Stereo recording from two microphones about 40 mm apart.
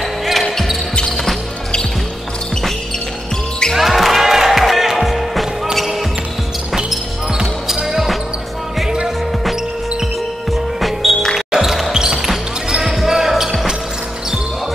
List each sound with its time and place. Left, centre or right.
0.2 s basketball bounce: centre
1.1 s basketball bounce: centre
3.7 s music: centre
5.8 s basketball bounce: centre
7.6 s basketball bounce: centre
10.8 s music: centre
11.5 s basketball bounce: centre